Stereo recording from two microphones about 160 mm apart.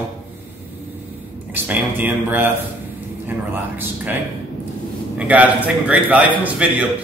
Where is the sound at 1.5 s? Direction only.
10° right (ahead or behind).